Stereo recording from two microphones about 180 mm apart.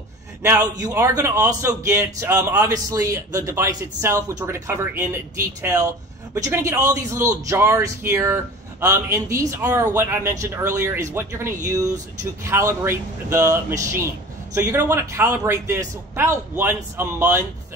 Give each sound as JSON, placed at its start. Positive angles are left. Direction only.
{"t": 0.4, "sound": "speech", "side_deg": -15}